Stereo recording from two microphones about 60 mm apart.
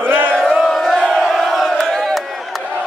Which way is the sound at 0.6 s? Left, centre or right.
Centre.